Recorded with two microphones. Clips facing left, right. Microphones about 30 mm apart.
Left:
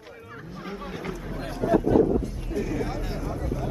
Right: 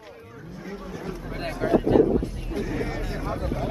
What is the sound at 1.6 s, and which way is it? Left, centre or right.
Speech, right.